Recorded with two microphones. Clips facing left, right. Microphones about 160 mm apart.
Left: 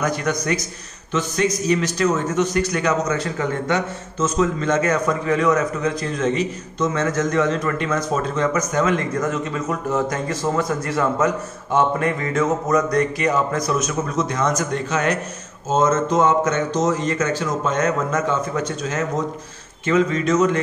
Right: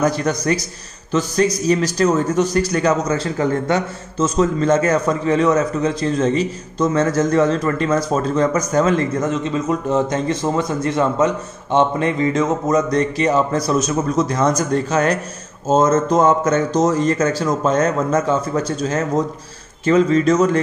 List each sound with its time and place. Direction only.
0.0 s a man's voice: 30° right (ahead or behind)
9.3 s a man's voice: 20° right (ahead or behind)